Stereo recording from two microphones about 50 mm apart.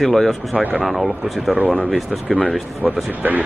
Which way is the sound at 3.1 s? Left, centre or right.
Right.